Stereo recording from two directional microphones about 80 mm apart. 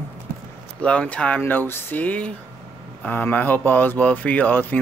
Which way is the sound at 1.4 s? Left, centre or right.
Left.